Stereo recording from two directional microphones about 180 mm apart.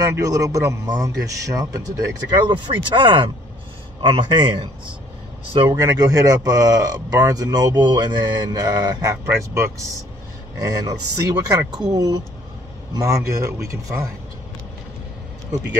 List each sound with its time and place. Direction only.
0.0 s speech: 20° right (ahead or behind)
5.7 s speech: 20° right (ahead or behind)